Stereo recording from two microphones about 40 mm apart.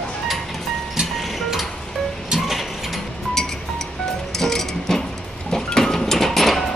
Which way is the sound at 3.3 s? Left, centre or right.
Centre.